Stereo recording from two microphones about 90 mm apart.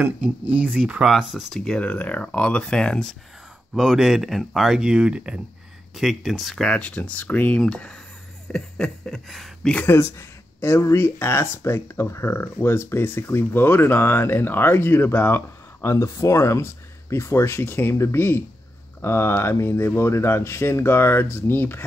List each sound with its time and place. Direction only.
0.0 s speech: 15° right (ahead or behind)
1.1 s speech: centre (ahead or behind)
1.8 s speech: 15° left (ahead or behind)
3.7 s speech: 5° right (ahead or behind)
8.5 s a sound: 5° left (ahead or behind)
9.8 s speech: 30° left (ahead or behind)